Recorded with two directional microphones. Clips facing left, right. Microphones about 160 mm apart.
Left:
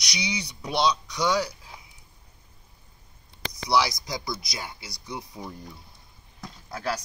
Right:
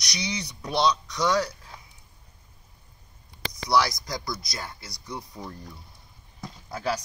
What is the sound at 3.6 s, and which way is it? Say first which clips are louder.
Speech: even; 5° left (ahead or behind).